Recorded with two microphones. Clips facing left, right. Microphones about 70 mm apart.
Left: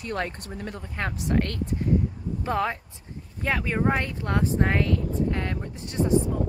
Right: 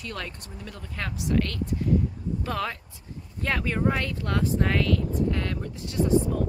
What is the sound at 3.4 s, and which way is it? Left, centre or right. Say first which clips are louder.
Speech: left 1 dB; centre.